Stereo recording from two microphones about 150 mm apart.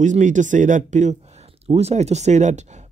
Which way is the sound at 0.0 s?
55° right (ahead or behind).